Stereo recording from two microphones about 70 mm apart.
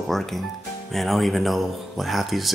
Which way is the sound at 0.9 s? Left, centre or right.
Centre.